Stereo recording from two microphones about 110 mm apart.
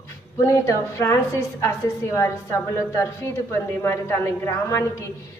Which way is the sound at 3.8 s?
20° left (ahead or behind).